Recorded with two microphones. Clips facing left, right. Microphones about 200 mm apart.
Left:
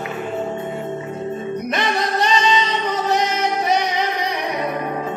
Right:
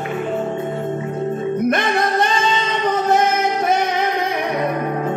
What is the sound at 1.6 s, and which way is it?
Music, 50° right (ahead or behind).